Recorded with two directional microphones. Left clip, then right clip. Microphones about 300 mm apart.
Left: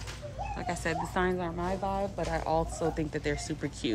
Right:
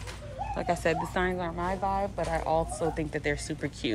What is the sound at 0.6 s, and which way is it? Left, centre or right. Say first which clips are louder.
Speech: right 6 dB; centre.